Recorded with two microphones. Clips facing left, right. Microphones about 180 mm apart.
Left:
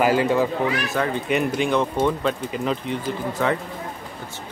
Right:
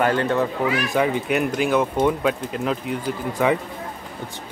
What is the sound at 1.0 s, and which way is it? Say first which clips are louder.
Speech: right 4 dB; 15° right (ahead or behind).